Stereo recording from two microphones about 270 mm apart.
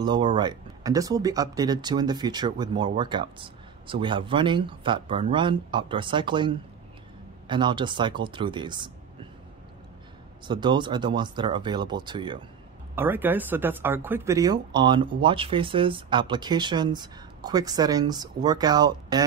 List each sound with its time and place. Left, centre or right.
0.0 s speech: centre
10.4 s speech: centre